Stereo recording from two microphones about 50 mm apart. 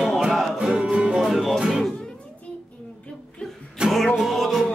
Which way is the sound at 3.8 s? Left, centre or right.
Centre.